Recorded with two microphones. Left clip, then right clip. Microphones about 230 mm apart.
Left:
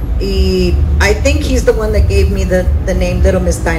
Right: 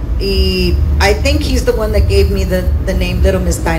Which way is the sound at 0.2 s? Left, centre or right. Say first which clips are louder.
Left 1 dB; right.